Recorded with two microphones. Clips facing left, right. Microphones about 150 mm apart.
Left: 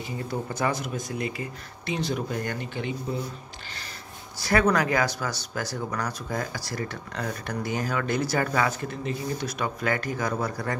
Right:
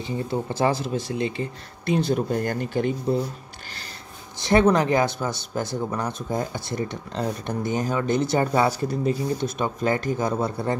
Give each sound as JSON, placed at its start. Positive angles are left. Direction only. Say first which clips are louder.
{"t": 0.0, "sound": "speech", "louder": "right 5 dB", "side_deg": -25}
{"t": 2.1, "sound": "speech", "louder": "right 6 dB", "side_deg": -40}
{"t": 4.4, "sound": "speech", "louder": "right 4 dB", "side_deg": -25}